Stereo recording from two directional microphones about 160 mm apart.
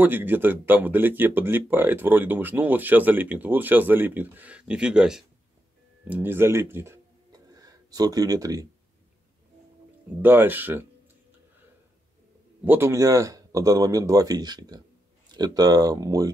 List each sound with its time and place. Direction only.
0.0 s speech: 10° right (ahead or behind)
10.2 s speech: 10° right (ahead or behind)
12.6 s speech: 15° right (ahead or behind)